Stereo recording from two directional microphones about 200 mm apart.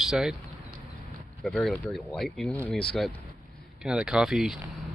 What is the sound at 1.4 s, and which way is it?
Speech, centre (ahead or behind).